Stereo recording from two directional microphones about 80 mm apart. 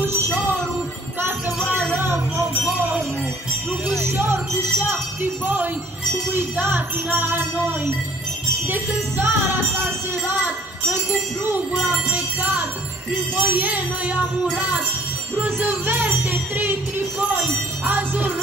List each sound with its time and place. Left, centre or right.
1.9 s music: right
4.0 s music: right
11.8 s music: right
15.3 s music: right
17.8 s music: right